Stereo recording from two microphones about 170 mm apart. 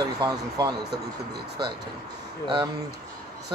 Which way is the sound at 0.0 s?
20° right (ahead or behind).